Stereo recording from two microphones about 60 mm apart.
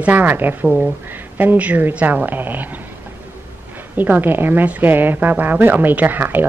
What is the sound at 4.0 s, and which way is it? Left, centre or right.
A woman's voice, right.